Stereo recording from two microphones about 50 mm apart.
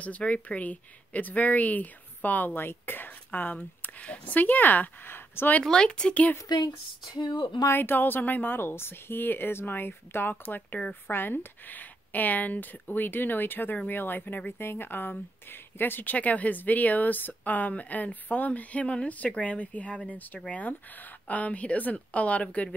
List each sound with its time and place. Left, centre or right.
0.0 s speech: left
2.5 s speech: left
5.6 s speech: centre
7.7 s a woman's voice: left